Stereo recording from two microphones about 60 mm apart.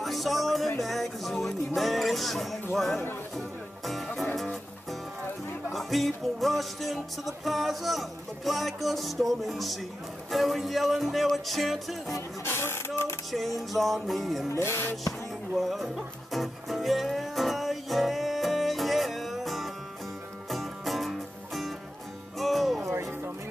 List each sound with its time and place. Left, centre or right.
0.0 s music: centre
5.7 s music: centre
12.4 s music: left
13.6 s music: centre
14.5 s music: left
15.5 s music: centre
22.8 s music: right